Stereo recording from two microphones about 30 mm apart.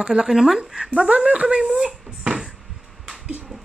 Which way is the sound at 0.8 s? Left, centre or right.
Right.